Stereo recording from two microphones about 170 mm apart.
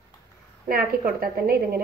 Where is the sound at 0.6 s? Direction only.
60° right (ahead or behind).